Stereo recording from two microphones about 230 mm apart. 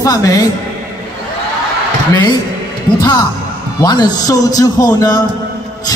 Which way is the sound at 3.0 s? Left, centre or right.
Centre.